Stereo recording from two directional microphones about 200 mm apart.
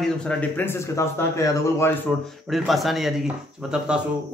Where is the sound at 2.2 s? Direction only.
Centre (ahead or behind).